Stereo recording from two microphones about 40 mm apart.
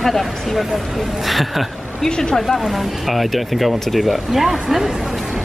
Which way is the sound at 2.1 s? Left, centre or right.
Left.